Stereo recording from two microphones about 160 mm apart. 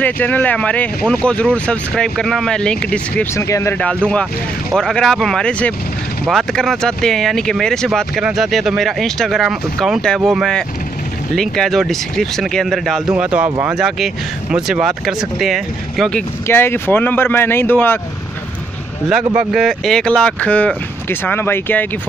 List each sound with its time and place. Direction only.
0.0 s speech: 10° left (ahead or behind)
3.3 s speech: 20° left (ahead or behind)
3.8 s speech: 5° left (ahead or behind)
19.3 s speech: 5° right (ahead or behind); by 21.8 s 15° left (ahead or behind)